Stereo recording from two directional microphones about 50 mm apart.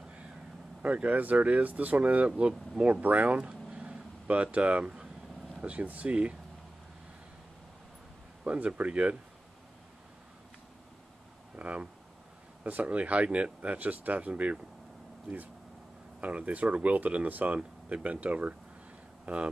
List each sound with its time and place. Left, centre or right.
1.0 s speech: right
3.7 s vehicle: centre
4.3 s speech: right
8.5 s speech: right
11.5 s speech: right
16.2 s speech: right